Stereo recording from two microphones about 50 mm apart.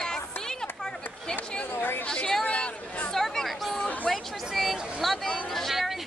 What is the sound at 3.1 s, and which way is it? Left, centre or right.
Chatter, centre.